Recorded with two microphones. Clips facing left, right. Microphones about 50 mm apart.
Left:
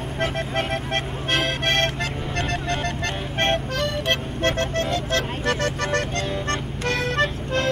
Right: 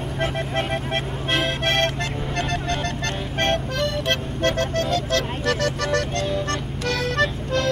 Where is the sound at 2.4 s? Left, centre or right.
Left.